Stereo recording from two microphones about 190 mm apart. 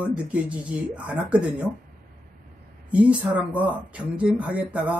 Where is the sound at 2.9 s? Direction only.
5° right (ahead or behind).